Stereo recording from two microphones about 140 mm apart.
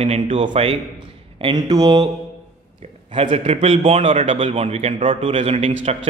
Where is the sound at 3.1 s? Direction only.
40° right (ahead or behind).